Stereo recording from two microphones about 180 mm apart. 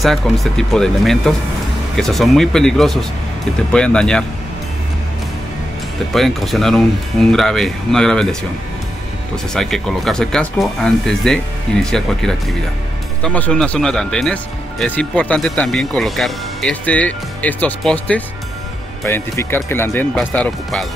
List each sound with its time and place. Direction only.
0.0 s speech: centre (ahead or behind)
6.1 s speech: centre (ahead or behind)
9.5 s speech: 5° left (ahead or behind)